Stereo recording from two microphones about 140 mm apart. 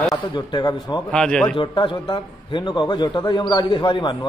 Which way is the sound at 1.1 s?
5° left (ahead or behind).